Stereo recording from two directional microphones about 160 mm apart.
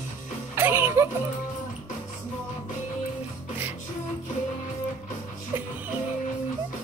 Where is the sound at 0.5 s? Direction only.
15° right (ahead or behind).